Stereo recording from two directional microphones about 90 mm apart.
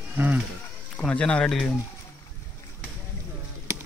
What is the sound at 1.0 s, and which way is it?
Speech, 10° left (ahead or behind).